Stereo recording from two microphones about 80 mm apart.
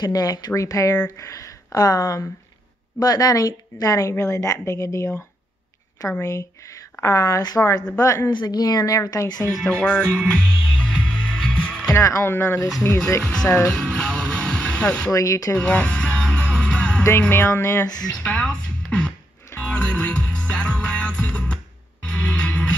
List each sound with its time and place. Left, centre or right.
0.0 s a woman's voice: left
6.2 s a woman's voice: left
8.3 s speech: left
9.5 s music: centre
11.9 s speech: left
13.3 s speech: centre
13.7 s music: centre
15.0 s a woman's voice: left
15.6 s music: centre
17.3 s speech: left
18.0 s speech: centre
22.0 s music: centre